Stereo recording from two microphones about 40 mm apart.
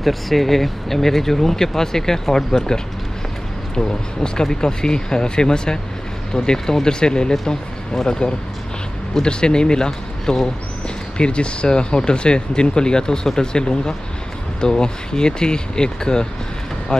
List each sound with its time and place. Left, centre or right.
0.0 s speech: centre
11.1 s speech: left